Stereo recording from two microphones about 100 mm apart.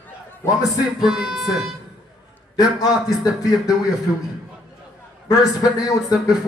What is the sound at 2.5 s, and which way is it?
A man's voice, 40° left (ahead or behind).